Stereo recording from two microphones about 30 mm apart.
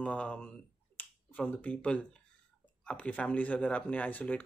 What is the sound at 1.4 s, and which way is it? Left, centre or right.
Speech, left.